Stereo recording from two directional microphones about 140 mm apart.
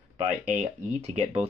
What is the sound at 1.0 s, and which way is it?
Speech, 50° right (ahead or behind).